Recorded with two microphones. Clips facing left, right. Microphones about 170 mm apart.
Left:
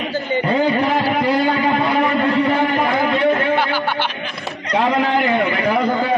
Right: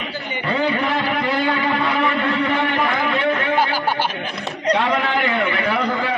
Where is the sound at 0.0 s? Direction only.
40° left (ahead or behind).